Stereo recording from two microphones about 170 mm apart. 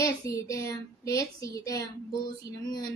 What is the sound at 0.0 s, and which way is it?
A woman's voice, 20° left (ahead or behind).